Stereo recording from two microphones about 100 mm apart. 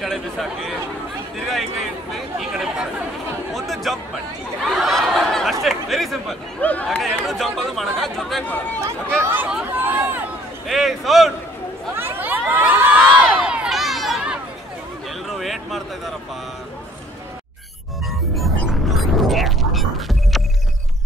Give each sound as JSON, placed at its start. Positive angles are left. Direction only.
{"t": 0.0, "sound": "speech", "side_deg": 0}
{"t": 2.1, "sound": "chatter", "side_deg": -5}
{"t": 3.5, "sound": "speech", "side_deg": 0}
{"t": 4.6, "sound": "a sound", "side_deg": 0}
{"t": 6.6, "sound": "speech", "side_deg": 15}
{"t": 7.2, "sound": "speech", "side_deg": 0}
{"t": 9.2, "sound": "speech", "side_deg": -20}
{"t": 9.7, "sound": "a sound", "side_deg": -20}
{"t": 10.7, "sound": "speech", "side_deg": 0}
{"t": 11.9, "sound": "crowd", "side_deg": -20}
{"t": 15.2, "sound": "a sound", "side_deg": 0}
{"t": 18.9, "sound": "music", "side_deg": 0}